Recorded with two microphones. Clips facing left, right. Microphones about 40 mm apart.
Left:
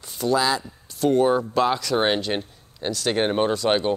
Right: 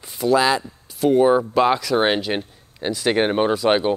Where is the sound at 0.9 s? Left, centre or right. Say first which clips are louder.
Right 3 dB; centre.